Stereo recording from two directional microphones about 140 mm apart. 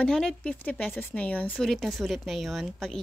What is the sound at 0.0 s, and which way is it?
A woman's voice, 5° left (ahead or behind).